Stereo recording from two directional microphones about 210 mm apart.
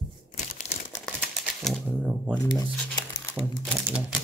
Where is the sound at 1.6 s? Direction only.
5° right (ahead or behind).